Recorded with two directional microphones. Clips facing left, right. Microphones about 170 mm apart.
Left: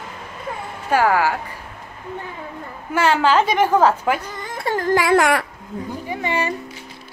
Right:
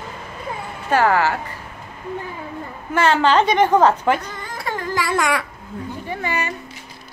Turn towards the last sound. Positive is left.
turn(degrees=25)  # may be behind; listen again after turning